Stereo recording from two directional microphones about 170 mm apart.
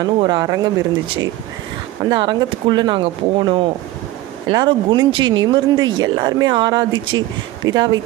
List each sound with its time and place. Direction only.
0.0 s speech: 25° right (ahead or behind)
2.0 s speech: 25° right (ahead or behind)